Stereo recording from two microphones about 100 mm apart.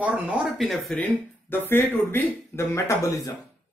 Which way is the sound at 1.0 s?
20° left (ahead or behind).